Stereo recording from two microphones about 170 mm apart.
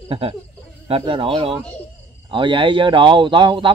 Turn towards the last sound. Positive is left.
turn(degrees=-30)  # may be behind; listen again after turning